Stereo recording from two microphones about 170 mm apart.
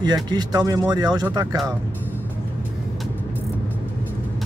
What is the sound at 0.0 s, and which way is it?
Speech, 25° right (ahead or behind).